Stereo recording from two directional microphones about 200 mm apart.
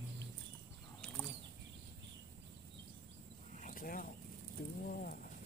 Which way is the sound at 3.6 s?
45° left (ahead or behind).